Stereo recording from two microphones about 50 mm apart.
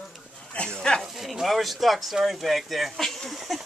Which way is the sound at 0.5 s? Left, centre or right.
Left.